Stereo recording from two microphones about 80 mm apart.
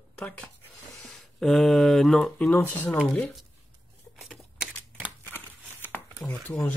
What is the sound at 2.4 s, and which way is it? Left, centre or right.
Speech, left.